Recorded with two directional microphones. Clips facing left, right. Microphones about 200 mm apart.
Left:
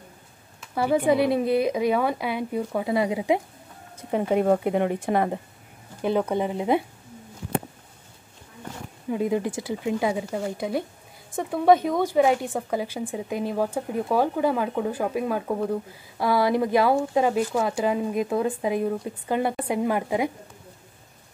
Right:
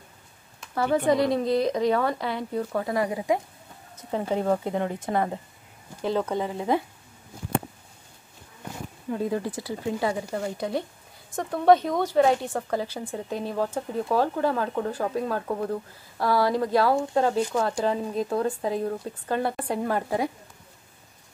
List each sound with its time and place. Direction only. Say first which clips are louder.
0.6 s speech: left 1 dB; 10° left (ahead or behind)
9.1 s speech: left 3 dB; 15° left (ahead or behind)